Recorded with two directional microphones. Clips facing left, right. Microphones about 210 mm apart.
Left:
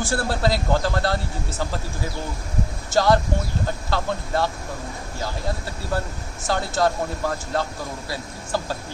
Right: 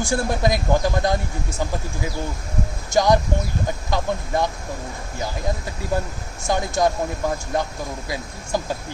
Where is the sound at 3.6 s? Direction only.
15° right (ahead or behind).